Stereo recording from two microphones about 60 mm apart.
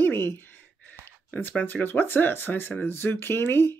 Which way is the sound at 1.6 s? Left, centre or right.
Left.